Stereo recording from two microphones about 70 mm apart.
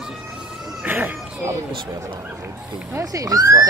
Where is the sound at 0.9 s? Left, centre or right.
Right.